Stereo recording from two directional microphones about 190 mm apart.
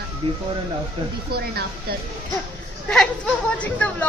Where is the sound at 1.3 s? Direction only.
55° right (ahead or behind).